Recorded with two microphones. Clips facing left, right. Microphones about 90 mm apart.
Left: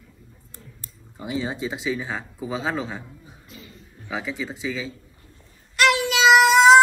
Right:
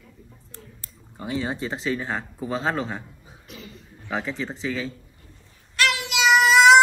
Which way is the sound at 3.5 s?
90° right.